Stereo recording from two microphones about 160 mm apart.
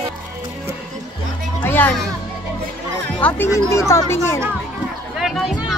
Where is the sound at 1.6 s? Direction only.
10° left (ahead or behind).